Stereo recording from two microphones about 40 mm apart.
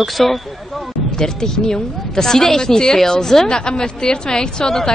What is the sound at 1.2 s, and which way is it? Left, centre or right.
A woman's voice, centre.